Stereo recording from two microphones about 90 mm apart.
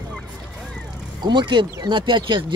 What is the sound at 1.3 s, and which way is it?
Speech, 60° right (ahead or behind).